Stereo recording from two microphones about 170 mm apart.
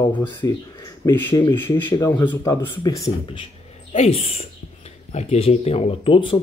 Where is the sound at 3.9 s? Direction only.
35° left (ahead or behind).